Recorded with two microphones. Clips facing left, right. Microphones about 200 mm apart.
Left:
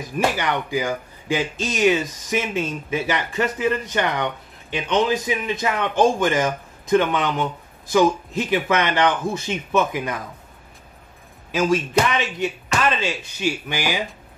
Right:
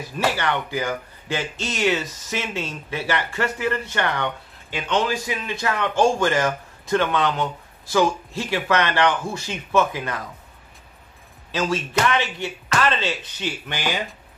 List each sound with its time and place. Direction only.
0.4 s speech: 15° left (ahead or behind)
11.5 s speech: 15° left (ahead or behind)